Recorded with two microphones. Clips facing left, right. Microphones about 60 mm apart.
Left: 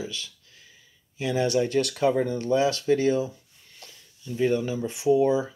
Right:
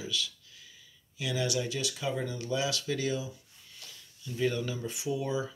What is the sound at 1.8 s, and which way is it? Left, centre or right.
Speech, left.